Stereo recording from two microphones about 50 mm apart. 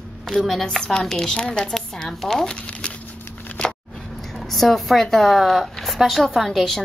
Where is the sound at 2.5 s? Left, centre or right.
Left.